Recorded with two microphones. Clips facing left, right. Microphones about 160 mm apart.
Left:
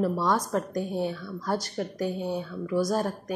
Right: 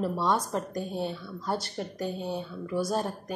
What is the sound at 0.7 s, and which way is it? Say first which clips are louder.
Speech: left 3 dB; 15° left (ahead or behind).